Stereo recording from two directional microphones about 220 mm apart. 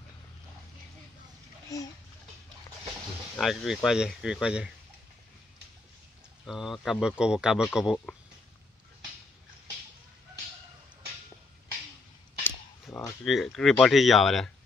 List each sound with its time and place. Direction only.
1.7 s a child's voice: 15° left (ahead or behind)
3.3 s speech: centre (ahead or behind)
6.4 s speech: centre (ahead or behind)
12.4 s a sound: 10° left (ahead or behind)
13.3 s speech: centre (ahead or behind)